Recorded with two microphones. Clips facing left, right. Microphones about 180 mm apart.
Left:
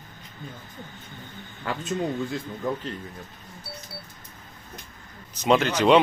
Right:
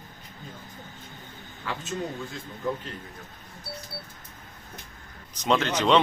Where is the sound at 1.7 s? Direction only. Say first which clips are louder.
Left 3 dB; 50° left (ahead or behind).